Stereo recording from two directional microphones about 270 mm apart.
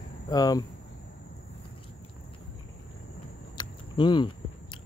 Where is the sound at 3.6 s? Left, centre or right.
Centre.